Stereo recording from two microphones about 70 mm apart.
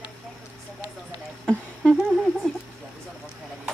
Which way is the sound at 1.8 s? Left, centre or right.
Centre.